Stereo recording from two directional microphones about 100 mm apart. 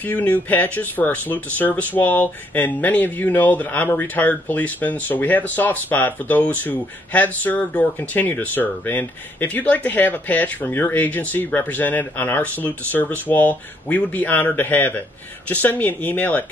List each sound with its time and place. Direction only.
0.0 s speech: 15° left (ahead or behind)